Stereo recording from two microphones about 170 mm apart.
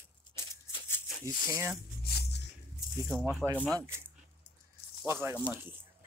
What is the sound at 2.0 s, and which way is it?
Music, 75° left (ahead or behind).